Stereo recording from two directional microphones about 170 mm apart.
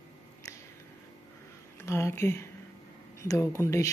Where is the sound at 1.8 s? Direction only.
15° left (ahead or behind).